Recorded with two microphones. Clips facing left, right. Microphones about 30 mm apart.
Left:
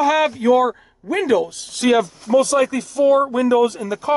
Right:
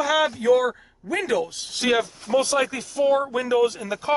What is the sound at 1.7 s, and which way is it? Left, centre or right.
Speech, centre.